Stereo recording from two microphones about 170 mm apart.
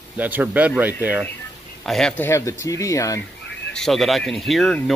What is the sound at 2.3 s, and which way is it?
Speech, 15° left (ahead or behind).